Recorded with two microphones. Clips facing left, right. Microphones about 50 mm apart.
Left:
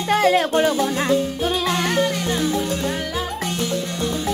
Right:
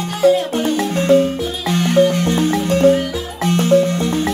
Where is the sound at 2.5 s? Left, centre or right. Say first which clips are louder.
Right 9 dB; right.